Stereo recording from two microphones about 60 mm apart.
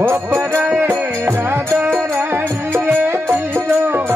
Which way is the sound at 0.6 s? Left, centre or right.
Right.